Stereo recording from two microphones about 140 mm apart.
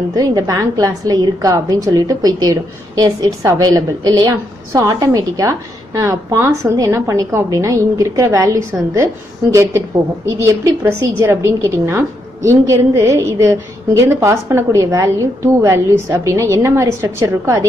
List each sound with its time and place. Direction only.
0.1 s a woman's voice: 25° right (ahead or behind)